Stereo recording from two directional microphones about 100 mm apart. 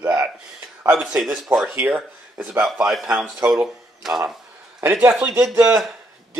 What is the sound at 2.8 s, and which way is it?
Speech, 5° right (ahead or behind).